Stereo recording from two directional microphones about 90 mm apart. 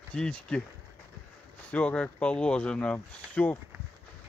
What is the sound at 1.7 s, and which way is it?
Speech, 15° left (ahead or behind).